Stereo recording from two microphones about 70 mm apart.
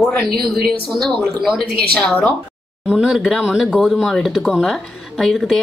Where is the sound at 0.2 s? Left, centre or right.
Centre.